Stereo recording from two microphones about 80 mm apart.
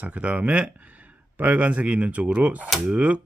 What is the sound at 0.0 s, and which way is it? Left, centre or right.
Speech, centre.